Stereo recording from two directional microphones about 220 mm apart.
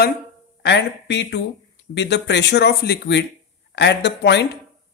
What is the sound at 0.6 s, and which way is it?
Speech, 55° left (ahead or behind).